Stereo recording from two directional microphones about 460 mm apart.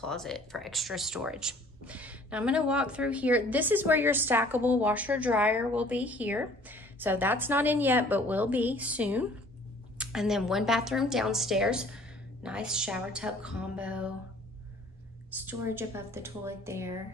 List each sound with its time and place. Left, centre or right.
0.0 s speech: centre
15.4 s speech: centre